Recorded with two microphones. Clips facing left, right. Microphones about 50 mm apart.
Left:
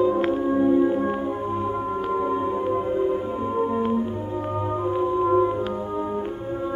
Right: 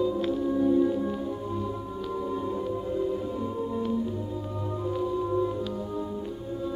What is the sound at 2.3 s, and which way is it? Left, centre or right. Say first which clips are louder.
Music: left 7 dB; left.